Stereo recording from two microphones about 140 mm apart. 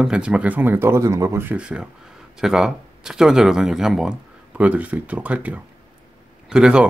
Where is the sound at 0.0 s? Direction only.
5° right (ahead or behind).